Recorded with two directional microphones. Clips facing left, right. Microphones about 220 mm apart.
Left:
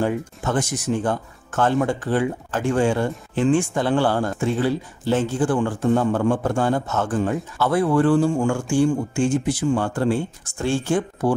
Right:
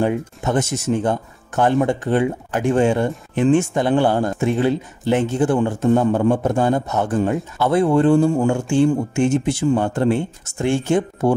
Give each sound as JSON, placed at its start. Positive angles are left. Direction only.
{"t": 0.0, "sound": "speech", "side_deg": -20}